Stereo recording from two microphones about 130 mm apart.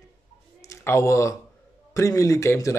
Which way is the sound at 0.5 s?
25° left (ahead or behind).